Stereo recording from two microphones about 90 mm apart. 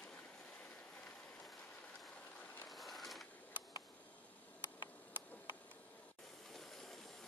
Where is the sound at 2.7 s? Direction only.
Centre (ahead or behind).